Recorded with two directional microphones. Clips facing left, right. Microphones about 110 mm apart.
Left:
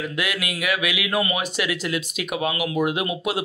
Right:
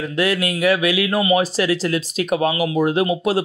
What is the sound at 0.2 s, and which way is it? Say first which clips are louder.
Speech: right 11 dB; 35° right (ahead or behind).